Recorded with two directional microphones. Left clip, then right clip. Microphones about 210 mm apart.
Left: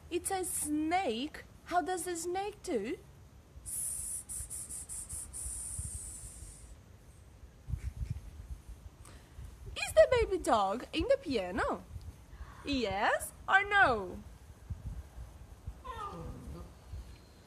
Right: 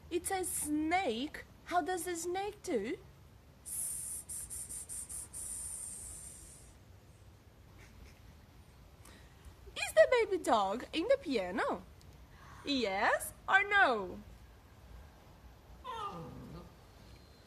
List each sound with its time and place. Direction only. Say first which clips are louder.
0.1 s a woman's voice: left 1 dB; 5° left (ahead or behind)
9.8 s a woman's voice: left 1 dB; 5° left (ahead or behind)
15.8 s a sound: right 1 dB; 45° right (ahead or behind)